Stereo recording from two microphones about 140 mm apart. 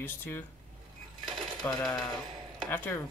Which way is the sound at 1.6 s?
15° left (ahead or behind).